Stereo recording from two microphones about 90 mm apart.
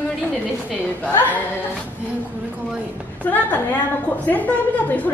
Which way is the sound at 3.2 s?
20° left (ahead or behind).